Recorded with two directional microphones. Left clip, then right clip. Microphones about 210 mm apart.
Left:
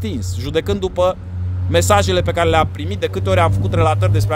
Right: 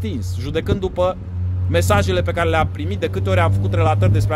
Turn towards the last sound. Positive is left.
turn(degrees=25)  # may be behind; listen again after turning